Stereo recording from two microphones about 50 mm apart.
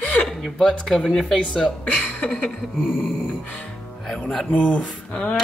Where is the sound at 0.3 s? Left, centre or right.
Centre.